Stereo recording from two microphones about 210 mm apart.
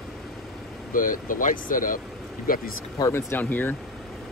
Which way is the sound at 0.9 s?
40° left (ahead or behind).